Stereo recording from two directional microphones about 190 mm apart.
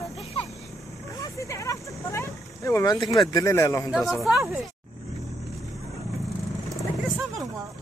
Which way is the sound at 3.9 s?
Centre (ahead or behind).